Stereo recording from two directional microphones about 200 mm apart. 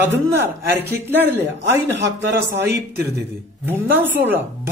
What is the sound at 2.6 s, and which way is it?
Speech, 55° right (ahead or behind).